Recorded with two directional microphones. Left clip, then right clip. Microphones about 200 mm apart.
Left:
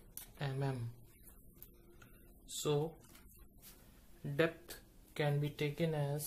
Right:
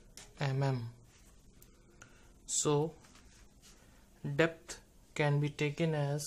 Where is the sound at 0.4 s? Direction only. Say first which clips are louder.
Right 6 dB; 35° right (ahead or behind).